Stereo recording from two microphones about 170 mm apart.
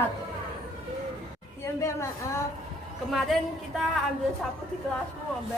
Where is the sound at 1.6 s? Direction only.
15° left (ahead or behind).